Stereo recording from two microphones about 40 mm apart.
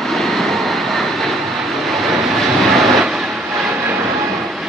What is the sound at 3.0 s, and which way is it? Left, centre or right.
Vehicle, centre.